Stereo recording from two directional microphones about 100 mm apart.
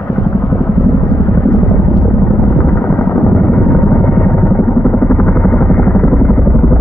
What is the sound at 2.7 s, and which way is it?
Synthesizer, 20° left (ahead or behind).